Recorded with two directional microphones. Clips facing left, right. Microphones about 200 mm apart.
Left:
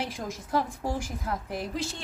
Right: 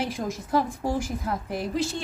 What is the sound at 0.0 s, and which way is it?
A woman's voice, 10° right (ahead or behind).